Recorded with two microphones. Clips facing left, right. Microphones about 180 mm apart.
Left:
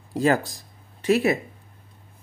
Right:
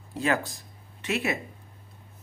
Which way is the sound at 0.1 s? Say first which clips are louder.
Left 6 dB; 35° left (ahead or behind).